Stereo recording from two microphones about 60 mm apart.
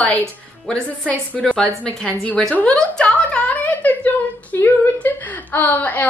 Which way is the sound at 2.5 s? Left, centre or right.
Centre.